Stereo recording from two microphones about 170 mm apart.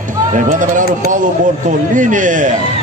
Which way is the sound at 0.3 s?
50° right (ahead or behind).